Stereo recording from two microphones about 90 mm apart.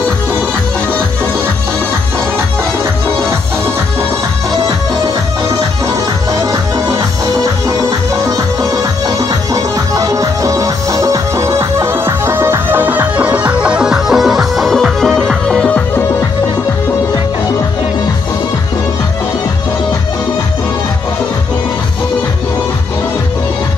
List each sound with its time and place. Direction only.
9.5 s music: 40° right (ahead or behind); by 15.6 s 5° left (ahead or behind)